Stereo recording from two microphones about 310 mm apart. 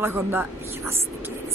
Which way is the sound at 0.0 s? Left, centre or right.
Centre.